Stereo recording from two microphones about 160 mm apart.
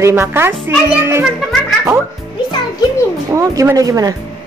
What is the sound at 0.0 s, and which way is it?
A child's voice, 15° right (ahead or behind).